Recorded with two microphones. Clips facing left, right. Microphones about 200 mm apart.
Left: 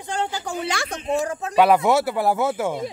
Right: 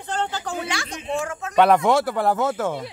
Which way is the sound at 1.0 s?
35° left (ahead or behind).